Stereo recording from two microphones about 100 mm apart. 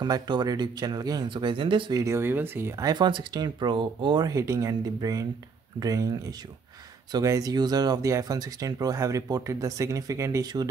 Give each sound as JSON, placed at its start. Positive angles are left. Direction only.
{"t": 0.0, "sound": "speech", "side_deg": -45}
{"t": 1.3, "sound": "speech", "side_deg": -55}
{"t": 1.9, "sound": "speech", "side_deg": -35}
{"t": 2.1, "sound": "speech", "side_deg": -20}
{"t": 2.8, "sound": "speech", "side_deg": -45}
{"t": 4.3, "sound": "speech", "side_deg": -30}
{"t": 7.2, "sound": "speech", "side_deg": -35}
{"t": 10.4, "sound": "speech", "side_deg": -45}